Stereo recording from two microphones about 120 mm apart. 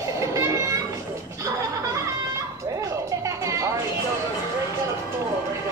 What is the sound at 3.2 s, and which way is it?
Music, 25° right (ahead or behind).